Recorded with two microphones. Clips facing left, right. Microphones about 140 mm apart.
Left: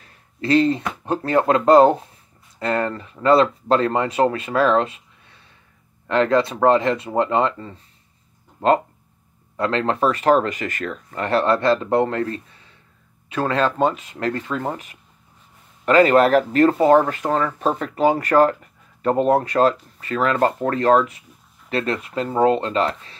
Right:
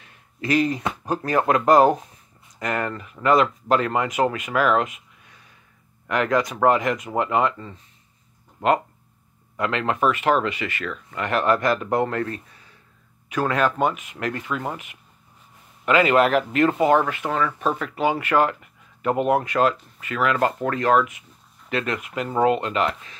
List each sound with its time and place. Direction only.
0.0 s a sound: 30° left (ahead or behind)
1.0 s speech: 25° left (ahead or behind)
9.6 s speech: 35° left (ahead or behind)